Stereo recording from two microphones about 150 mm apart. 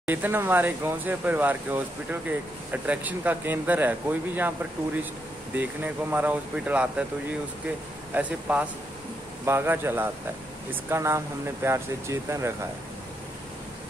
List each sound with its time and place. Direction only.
0.0 s speech: 10° right (ahead or behind)
5.6 s speech: 10° right (ahead or behind)
8.1 s speech: 10° right (ahead or behind)